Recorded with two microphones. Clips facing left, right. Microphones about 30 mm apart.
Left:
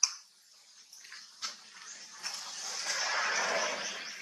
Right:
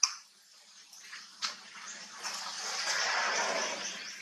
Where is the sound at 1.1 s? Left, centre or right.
Right.